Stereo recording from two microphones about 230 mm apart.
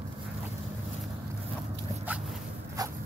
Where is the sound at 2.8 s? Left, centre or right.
Centre.